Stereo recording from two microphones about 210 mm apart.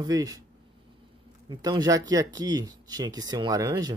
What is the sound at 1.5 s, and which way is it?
Speech, 20° right (ahead or behind).